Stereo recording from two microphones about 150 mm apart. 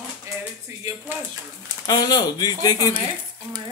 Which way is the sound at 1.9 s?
25° left (ahead or behind).